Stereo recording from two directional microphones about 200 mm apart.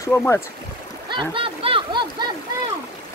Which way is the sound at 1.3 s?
25° right (ahead or behind).